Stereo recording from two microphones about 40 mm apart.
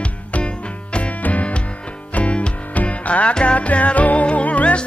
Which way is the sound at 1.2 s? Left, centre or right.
Left.